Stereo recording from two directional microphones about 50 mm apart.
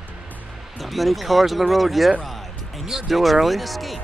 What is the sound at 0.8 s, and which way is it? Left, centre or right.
Speech, centre.